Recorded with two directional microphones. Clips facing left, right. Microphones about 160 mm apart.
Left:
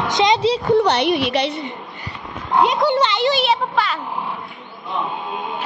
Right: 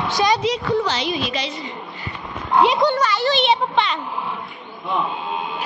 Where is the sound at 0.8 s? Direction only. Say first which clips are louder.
Left 6 dB; 65° left (ahead or behind).